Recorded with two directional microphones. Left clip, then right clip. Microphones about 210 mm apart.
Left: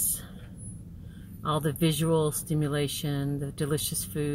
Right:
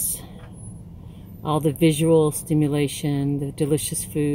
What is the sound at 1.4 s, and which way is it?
Speech, 15° right (ahead or behind).